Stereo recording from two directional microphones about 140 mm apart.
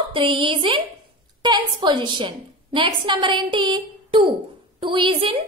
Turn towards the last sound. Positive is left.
turn(degrees=-40)  # may be behind; listen again after turning